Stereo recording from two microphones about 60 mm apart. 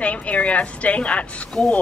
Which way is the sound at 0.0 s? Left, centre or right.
Left.